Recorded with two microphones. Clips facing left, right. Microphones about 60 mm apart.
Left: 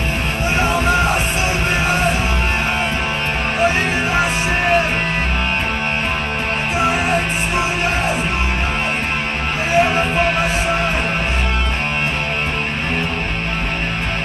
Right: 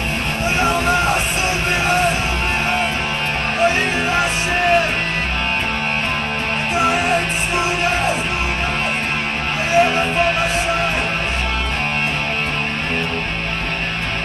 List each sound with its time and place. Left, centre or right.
0.6 s music: centre
3.5 s music: centre
6.8 s music: centre
9.7 s music: centre